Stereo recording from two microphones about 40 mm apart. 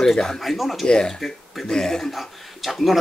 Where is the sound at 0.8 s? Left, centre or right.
Centre.